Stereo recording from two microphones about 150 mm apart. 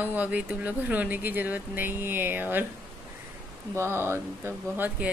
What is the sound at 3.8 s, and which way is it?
Speech, 15° right (ahead or behind).